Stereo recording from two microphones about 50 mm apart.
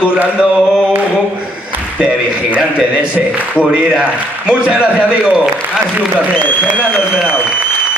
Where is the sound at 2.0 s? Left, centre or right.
Right.